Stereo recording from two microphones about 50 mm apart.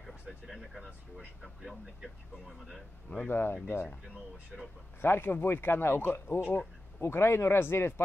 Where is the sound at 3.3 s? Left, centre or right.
Left.